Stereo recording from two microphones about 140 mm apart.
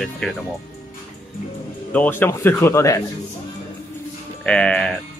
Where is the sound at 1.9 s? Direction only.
15° left (ahead or behind).